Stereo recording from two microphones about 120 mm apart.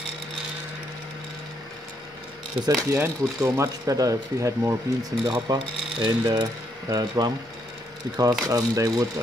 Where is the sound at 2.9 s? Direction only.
25° right (ahead or behind).